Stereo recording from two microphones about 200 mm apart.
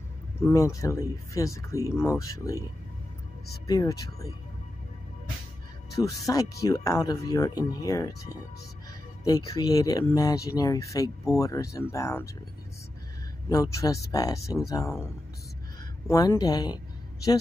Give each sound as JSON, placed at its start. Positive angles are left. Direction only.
{"t": 0.4, "sound": "speech", "side_deg": 15}
{"t": 3.6, "sound": "speech", "side_deg": 15}
{"t": 5.9, "sound": "speech", "side_deg": 15}
{"t": 9.2, "sound": "speech", "side_deg": 15}
{"t": 13.5, "sound": "speech", "side_deg": 15}
{"t": 16.1, "sound": "speech", "side_deg": 15}